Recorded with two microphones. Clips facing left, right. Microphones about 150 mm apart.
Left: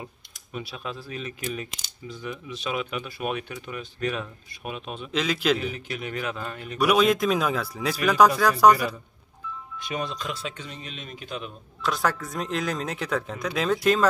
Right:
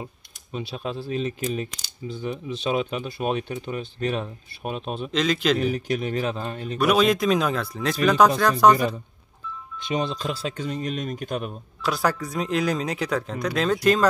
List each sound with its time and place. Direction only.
0.0 s speech: 25° right (ahead or behind)
5.1 s speech: 5° left (ahead or behind)
5.6 s speech: 40° right (ahead or behind)
6.8 s speech: 5° left (ahead or behind)
8.7 s a man's voice: 30° right (ahead or behind); by 11.5 s 50° right (ahead or behind)
11.8 s speech: centre (ahead or behind)